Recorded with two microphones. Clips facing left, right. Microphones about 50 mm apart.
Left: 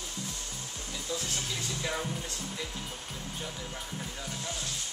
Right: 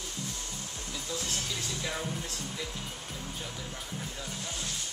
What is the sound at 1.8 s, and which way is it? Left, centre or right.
Speech, centre.